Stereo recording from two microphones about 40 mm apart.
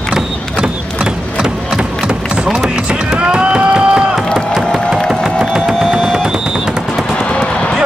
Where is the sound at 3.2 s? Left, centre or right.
Right.